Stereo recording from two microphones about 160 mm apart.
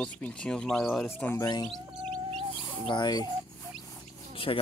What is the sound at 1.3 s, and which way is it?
Speech, 20° left (ahead or behind).